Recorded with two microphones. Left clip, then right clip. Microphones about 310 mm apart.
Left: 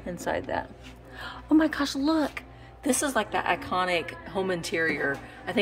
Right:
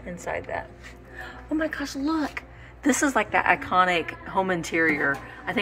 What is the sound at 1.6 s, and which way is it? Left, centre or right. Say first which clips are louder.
Speech: left 2 dB; centre.